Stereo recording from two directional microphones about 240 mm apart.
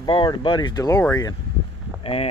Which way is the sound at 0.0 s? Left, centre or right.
Centre.